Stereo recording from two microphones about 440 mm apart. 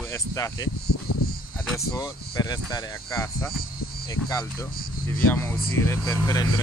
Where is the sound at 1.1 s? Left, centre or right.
Left.